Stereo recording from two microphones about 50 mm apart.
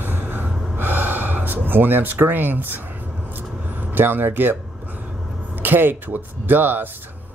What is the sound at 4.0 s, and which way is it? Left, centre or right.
Speech, right.